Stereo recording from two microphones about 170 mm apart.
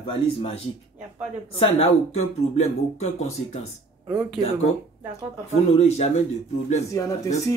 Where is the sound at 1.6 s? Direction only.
35° left (ahead or behind).